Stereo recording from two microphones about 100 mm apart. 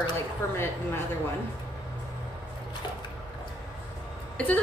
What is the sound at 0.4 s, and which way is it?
Speech, 30° left (ahead or behind).